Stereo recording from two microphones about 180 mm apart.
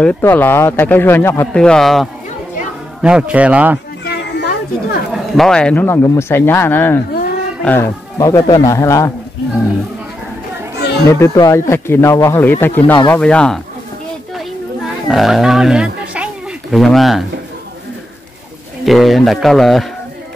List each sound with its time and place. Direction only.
0.0 s speech: 10° left (ahead or behind); by 3.8 s 5° right (ahead or behind)
4.0 s children playing: 70° left (ahead or behind)
5.1 s speech: centre (ahead or behind); by 9.1 s 15° left (ahead or behind)
11.1 s speech: 15° left (ahead or behind)
15.0 s speech: centre (ahead or behind)
18.9 s speech: centre (ahead or behind)